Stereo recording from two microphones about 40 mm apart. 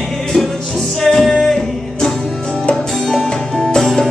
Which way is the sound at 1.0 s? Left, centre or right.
Centre.